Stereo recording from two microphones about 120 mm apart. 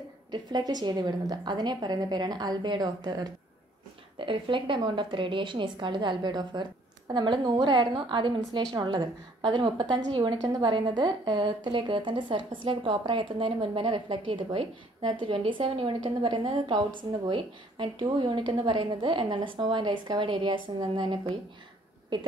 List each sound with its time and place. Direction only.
0.3 s a woman's voice: 35° right (ahead or behind)
4.2 s a woman's voice: 45° right (ahead or behind)